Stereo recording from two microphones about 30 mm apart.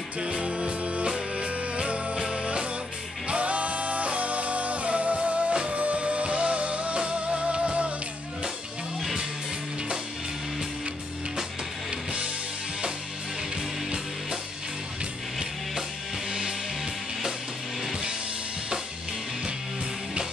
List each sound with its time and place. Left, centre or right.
0.2 s music: right